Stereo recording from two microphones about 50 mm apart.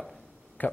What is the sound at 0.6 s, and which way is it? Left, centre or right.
Speech, left.